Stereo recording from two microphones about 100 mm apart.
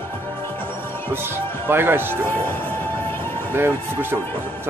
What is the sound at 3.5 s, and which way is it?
Speech, 20° right (ahead or behind).